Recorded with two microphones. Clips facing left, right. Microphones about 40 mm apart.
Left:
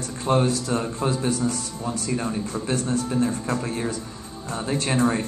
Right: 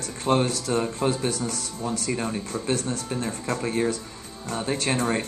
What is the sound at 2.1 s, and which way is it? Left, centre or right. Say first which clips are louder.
Speech: left 2 dB; centre.